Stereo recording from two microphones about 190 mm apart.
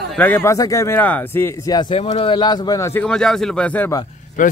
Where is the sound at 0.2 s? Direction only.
10° left (ahead or behind).